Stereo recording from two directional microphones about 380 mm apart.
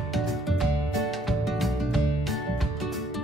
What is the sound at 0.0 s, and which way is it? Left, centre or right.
Music, centre.